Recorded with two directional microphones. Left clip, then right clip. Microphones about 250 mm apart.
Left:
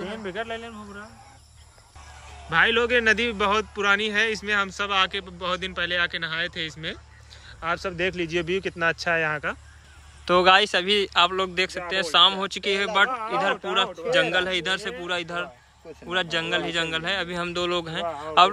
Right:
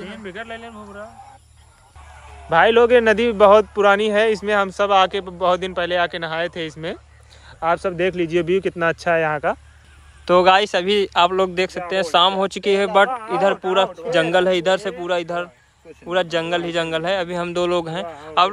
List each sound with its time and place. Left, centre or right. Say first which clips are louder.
0.0 s speech: left 1 dB; centre
2.5 s speech: right 7 dB; centre
10.2 s speech: right 4 dB; centre
14.1 s speech: right 5 dB; centre